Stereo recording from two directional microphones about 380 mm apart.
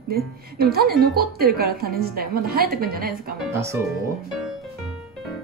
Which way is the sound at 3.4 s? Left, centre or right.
Centre.